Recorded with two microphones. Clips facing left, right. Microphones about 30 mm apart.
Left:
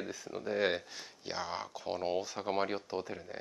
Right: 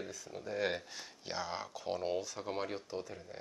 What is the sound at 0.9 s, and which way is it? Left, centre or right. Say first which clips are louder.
Speech: left 1 dB; centre.